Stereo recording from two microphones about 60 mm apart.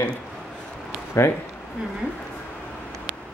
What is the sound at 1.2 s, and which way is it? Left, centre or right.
Speech, left.